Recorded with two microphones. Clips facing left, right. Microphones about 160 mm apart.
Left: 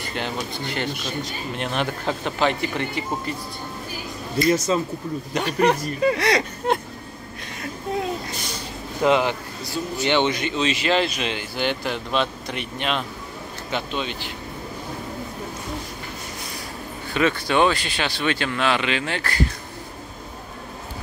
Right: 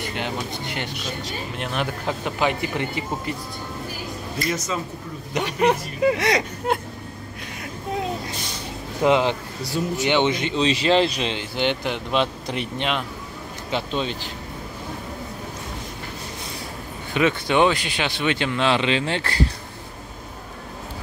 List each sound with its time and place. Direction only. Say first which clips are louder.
0.0 s speech: even; 15° right (ahead or behind)
1.6 s speech: left 2 dB; 5° right (ahead or behind)
4.5 s speech: left 7 dB; 30° left (ahead or behind)
5.3 s speech: even; 20° right (ahead or behind)
6.7 s speech: left 1 dB; 10° right (ahead or behind)
9.0 s speech: right 1 dB; 20° right (ahead or behind)
17.1 s speech: right 1 dB; 20° right (ahead or behind)